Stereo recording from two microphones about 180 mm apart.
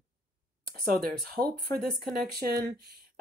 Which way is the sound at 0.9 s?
55° right (ahead or behind).